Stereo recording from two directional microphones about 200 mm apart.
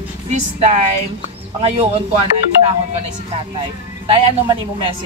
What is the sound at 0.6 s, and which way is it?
Speech, 35° right (ahead or behind).